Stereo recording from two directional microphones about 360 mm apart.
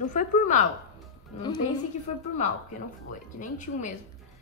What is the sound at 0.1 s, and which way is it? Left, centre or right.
Speech, left.